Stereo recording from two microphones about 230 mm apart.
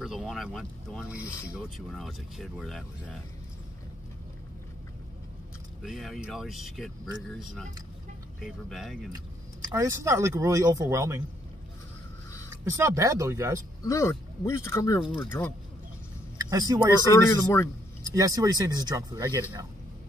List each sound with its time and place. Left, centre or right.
0.0 s speech: centre
5.8 s speech: centre
9.7 s speech: centre
12.6 s speech: centre
13.8 s speech: centre
16.3 s speech: centre
17.0 s speech: centre
18.1 s speech: centre